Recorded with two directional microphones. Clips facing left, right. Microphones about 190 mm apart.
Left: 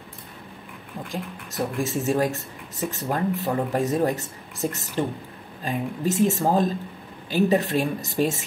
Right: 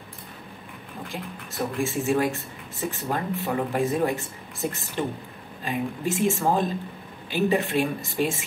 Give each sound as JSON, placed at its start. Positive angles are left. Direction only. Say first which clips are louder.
{"t": 1.1, "sound": "speech", "louder": "left 3 dB", "side_deg": 40}